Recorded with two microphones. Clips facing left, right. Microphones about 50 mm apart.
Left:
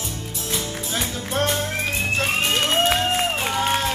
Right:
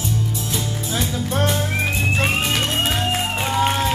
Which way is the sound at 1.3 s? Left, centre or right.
Centre.